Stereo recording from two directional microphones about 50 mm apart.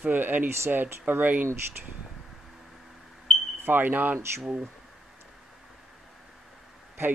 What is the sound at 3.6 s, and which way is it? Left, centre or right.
Speech, right.